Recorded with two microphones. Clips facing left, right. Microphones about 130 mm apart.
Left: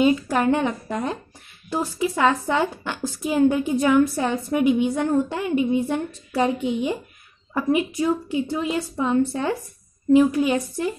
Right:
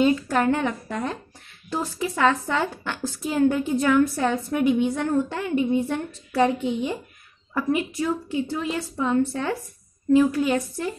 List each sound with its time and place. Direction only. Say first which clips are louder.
0.0 s a woman's voice: left 1 dB; 10° left (ahead or behind)